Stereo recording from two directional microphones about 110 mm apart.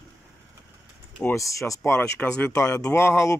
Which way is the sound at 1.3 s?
30° left (ahead or behind).